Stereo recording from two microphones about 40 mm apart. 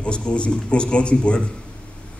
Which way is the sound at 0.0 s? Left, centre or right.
Left.